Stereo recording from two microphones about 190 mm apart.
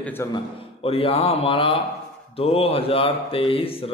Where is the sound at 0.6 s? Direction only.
30° left (ahead or behind).